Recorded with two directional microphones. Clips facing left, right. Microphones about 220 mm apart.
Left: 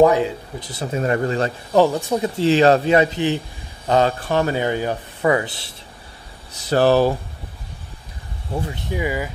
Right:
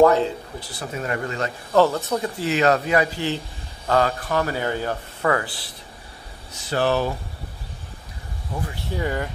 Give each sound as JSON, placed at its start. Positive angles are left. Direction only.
{"t": 0.0, "sound": "speech", "side_deg": 15}
{"t": 1.7, "sound": "speech", "side_deg": 15}
{"t": 6.5, "sound": "speech", "side_deg": 35}
{"t": 8.5, "sound": "speech", "side_deg": 20}